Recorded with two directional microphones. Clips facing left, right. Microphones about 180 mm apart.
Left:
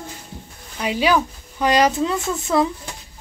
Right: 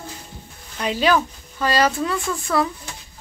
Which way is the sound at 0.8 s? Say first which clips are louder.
Even; 10° left (ahead or behind).